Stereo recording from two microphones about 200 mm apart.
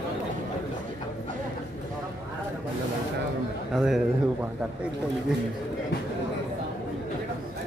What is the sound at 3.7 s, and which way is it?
Speech, 5° right (ahead or behind).